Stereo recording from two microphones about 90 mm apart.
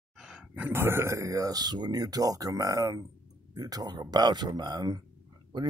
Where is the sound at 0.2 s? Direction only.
5° right (ahead or behind).